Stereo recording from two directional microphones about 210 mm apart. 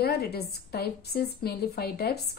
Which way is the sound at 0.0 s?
50° left (ahead or behind).